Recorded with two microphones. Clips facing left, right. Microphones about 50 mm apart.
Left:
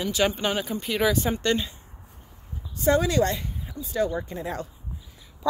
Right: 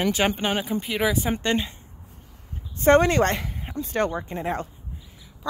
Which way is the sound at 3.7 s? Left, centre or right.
Right.